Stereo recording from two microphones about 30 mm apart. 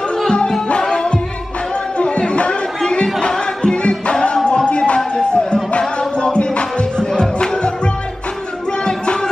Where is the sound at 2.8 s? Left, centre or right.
Left.